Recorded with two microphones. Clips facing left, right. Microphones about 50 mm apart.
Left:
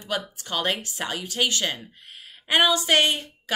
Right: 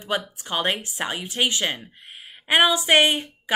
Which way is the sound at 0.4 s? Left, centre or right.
Right.